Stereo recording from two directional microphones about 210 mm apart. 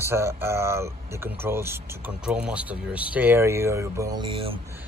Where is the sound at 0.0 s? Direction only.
10° right (ahead or behind).